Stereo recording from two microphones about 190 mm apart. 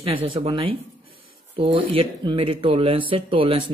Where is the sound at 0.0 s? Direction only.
30° right (ahead or behind).